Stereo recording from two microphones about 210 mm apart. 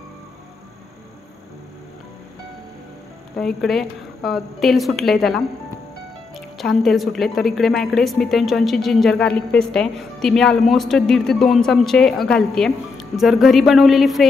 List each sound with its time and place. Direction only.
3.3 s a woman's voice: centre (ahead or behind)